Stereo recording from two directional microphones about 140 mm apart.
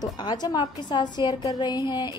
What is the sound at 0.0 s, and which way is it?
A woman's voice, 30° left (ahead or behind).